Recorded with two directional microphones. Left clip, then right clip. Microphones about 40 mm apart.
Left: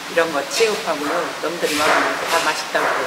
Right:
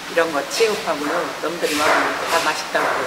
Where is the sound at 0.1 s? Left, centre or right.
Centre.